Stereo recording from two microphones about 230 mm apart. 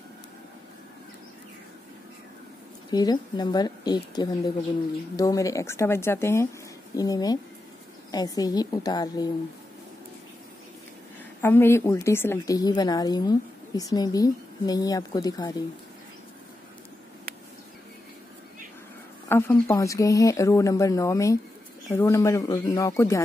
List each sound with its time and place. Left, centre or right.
2.9 s a woman's voice: centre
11.4 s a woman's voice: centre
19.2 s a woman's voice: centre